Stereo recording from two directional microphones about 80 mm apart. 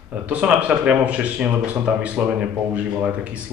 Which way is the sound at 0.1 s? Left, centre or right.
Centre.